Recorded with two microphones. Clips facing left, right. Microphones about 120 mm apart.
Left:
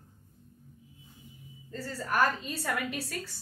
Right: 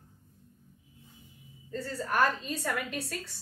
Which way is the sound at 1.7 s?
5° left (ahead or behind).